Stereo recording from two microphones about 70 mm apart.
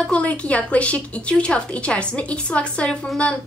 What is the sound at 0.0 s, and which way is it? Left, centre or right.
A woman's voice, centre.